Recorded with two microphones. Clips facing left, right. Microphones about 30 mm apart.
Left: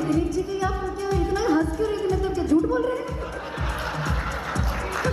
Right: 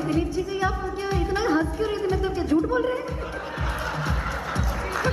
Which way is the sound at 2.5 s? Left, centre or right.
Centre.